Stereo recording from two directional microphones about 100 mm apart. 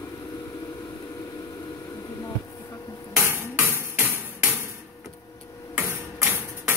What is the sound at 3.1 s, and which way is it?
Music, 25° right (ahead or behind).